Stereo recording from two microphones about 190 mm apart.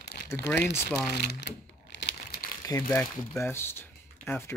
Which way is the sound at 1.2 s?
65° left (ahead or behind).